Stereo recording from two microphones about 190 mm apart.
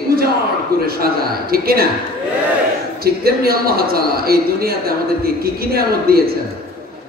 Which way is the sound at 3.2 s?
55° right (ahead or behind).